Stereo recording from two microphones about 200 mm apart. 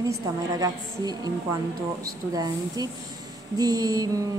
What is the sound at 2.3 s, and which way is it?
A woman's voice, 20° right (ahead or behind).